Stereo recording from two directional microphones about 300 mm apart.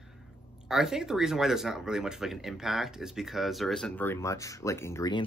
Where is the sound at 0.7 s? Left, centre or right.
Centre.